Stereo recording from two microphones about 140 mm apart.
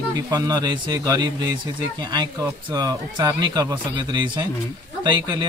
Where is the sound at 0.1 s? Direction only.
25° right (ahead or behind).